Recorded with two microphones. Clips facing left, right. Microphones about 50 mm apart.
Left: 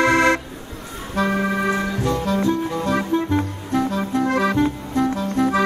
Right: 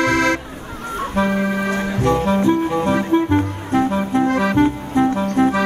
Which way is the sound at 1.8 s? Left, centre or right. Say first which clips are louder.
Right 4 dB; right.